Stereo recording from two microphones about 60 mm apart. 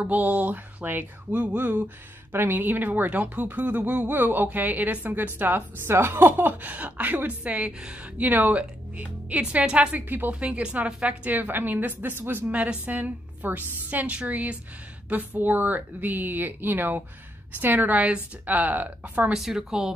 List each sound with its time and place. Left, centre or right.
0.0 s a woman's voice: right
8.3 s speech: right
9.9 s a woman's voice: right
10.4 s a woman's voice: right
11.2 s a woman's voice: right
19.3 s a woman's voice: centre